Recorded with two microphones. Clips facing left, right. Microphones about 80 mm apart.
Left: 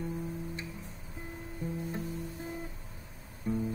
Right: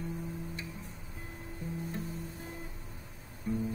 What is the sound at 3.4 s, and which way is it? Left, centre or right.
Music, left.